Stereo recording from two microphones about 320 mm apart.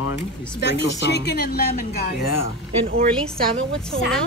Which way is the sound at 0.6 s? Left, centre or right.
Left.